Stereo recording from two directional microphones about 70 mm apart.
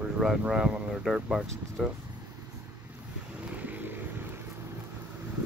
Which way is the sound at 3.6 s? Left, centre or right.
Right.